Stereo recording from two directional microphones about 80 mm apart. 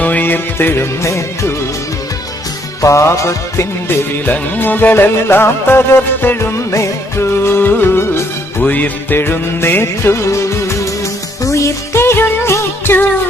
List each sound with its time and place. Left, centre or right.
0.0 s music: left
1.0 s music: left
2.8 s music: left
4.3 s music: left